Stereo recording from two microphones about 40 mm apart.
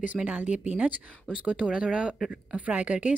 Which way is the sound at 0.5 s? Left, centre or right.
Right.